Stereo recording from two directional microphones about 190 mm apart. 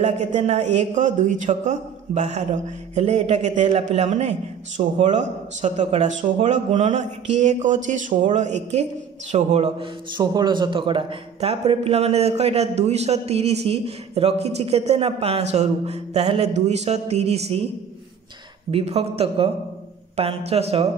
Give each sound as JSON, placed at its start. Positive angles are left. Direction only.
{"t": 0.0, "sound": "a man's voice", "side_deg": -35}
{"t": 18.7, "sound": "a man's voice", "side_deg": -30}